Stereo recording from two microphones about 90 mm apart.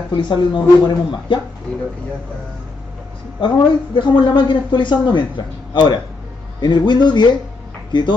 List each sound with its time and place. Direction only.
0.1 s a woman's voice: 60° left (ahead or behind)
1.7 s speech: 15° left (ahead or behind)
3.3 s a woman's voice: 60° left (ahead or behind)